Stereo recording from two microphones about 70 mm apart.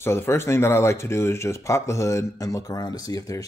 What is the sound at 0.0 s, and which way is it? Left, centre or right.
Speech, left.